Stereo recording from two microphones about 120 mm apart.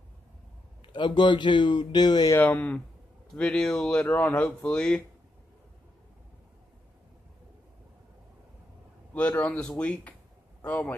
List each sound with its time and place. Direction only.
0.8 s speech: 40° left (ahead or behind)
2.3 s speech: 15° left (ahead or behind)
9.1 s speech: 10° left (ahead or behind)